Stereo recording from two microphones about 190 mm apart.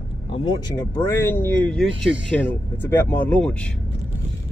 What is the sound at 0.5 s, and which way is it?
Speech, 20° left (ahead or behind).